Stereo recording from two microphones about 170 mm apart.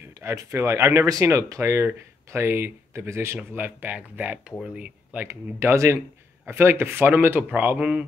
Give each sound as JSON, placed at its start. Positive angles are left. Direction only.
{"t": 0.2, "sound": "speech", "side_deg": -15}